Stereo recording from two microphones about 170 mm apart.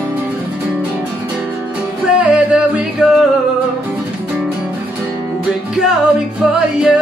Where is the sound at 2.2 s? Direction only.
5° right (ahead or behind).